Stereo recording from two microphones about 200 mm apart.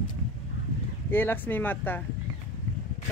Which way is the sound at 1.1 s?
10° left (ahead or behind).